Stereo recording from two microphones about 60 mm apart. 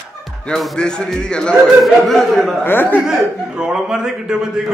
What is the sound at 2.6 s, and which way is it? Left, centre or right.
Speech, left.